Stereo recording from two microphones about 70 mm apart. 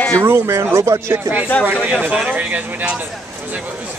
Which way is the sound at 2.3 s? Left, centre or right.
Right.